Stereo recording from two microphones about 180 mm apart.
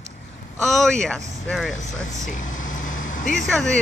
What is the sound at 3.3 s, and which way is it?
Speech, centre (ahead or behind).